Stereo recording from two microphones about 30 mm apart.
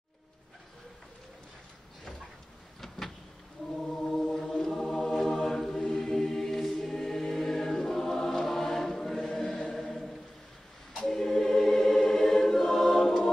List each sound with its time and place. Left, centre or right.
3.7 s music: centre
5.9 s choir: centre
9.8 s choir: centre